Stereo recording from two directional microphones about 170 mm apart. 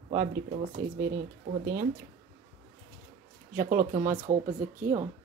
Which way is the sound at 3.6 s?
50° right (ahead or behind).